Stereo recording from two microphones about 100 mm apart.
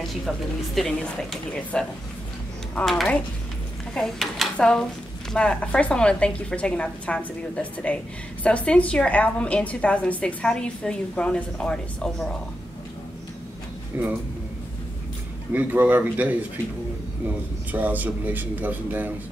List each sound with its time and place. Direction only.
0.1 s a woman's voice: 5° left (ahead or behind)
13.9 s speech: 20° right (ahead or behind)
15.5 s a man's voice: 20° right (ahead or behind)
17.6 s a man's voice: 15° right (ahead or behind)